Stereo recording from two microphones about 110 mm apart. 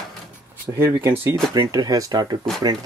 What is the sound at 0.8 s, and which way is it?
Speech, 20° right (ahead or behind).